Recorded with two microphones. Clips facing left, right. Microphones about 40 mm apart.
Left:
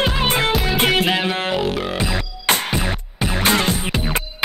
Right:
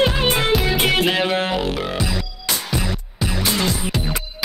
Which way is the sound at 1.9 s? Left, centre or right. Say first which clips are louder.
Left 1 dB; left.